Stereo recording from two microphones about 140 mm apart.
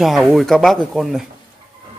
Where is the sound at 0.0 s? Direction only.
Centre (ahead or behind).